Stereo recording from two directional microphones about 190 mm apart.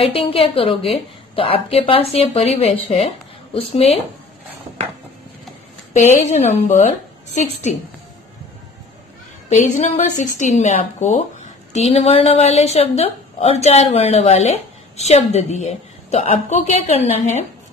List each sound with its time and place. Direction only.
0.0 s a woman's voice: 30° left (ahead or behind)
6.1 s a woman's voice: 35° left (ahead or behind)
9.5 s a woman's voice: 35° left (ahead or behind)